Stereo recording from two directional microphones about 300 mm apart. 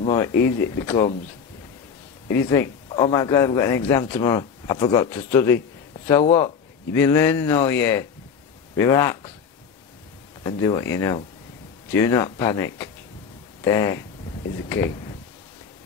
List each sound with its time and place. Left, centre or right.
0.0 s a sound: centre
0.4 s a man's voice: centre
2.3 s a man's voice: centre
10.4 s a man's voice: centre